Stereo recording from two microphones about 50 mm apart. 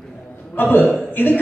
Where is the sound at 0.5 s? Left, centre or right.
Left.